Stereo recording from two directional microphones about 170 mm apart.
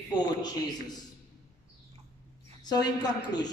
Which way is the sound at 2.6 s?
25° left (ahead or behind).